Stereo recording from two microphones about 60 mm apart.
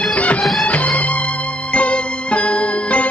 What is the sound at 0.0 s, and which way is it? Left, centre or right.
Music, left.